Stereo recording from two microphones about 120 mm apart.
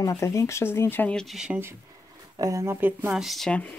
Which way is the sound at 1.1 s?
Centre (ahead or behind).